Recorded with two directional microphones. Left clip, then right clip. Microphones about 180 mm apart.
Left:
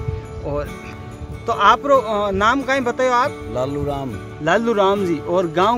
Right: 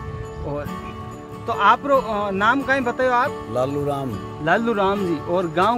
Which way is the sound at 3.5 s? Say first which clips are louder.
Even; 5° right (ahead or behind).